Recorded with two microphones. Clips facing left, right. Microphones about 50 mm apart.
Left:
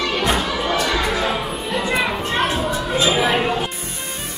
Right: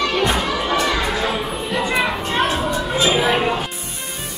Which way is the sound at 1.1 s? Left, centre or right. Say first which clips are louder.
Even; centre.